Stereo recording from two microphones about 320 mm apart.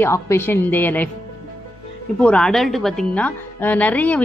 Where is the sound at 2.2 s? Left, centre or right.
Centre.